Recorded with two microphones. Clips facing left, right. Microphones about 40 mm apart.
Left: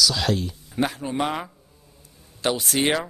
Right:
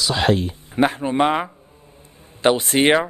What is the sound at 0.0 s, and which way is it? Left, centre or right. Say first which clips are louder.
A man's voice: right 4 dB; right.